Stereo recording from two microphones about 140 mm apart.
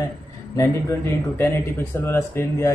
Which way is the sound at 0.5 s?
20° left (ahead or behind).